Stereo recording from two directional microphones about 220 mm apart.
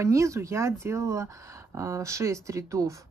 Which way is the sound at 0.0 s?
15° right (ahead or behind).